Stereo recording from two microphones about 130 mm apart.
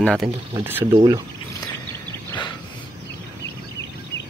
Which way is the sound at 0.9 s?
35° right (ahead or behind).